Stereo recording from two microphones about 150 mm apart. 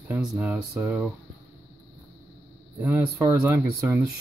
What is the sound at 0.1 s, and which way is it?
Speech, 10° right (ahead or behind).